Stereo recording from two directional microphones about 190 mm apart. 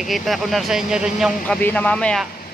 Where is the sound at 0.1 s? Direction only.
Centre (ahead or behind).